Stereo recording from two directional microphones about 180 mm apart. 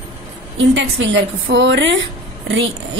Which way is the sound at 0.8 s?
90° right.